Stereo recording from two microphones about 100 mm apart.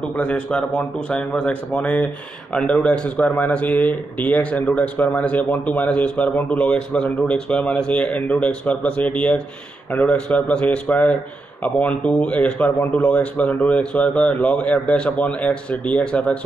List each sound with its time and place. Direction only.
0.1 s speech: 10° left (ahead or behind)